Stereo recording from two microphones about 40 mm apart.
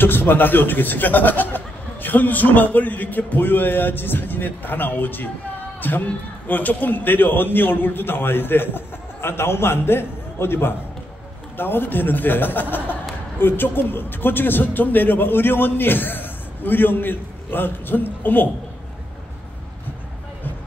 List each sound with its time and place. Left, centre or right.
0.0 s a man's voice: left
11.5 s a man's voice: left